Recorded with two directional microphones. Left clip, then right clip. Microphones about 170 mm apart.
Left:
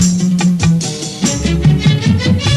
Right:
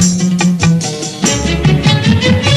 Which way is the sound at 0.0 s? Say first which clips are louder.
Right 2 dB; 35° left (ahead or behind).